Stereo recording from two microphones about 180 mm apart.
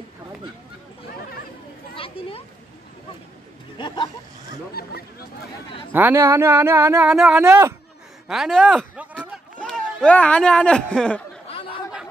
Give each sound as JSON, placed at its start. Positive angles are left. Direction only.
{"t": 2.0, "sound": "children playing", "side_deg": 30}
{"t": 3.7, "sound": "speech", "side_deg": 25}
{"t": 4.8, "sound": "speech", "side_deg": 60}
{"t": 5.9, "sound": "speech", "side_deg": -15}
{"t": 7.1, "sound": "speech", "side_deg": 0}
{"t": 7.3, "sound": "speech", "side_deg": -15}
{"t": 8.3, "sound": "a sound", "side_deg": 0}
{"t": 10.0, "sound": "speech", "side_deg": 5}